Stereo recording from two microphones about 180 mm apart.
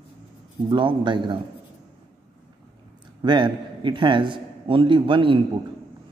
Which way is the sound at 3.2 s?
25° right (ahead or behind).